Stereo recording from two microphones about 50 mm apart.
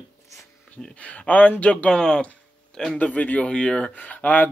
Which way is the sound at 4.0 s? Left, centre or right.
Left.